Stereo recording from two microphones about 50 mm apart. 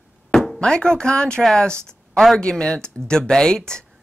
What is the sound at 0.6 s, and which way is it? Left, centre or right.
Speech, centre.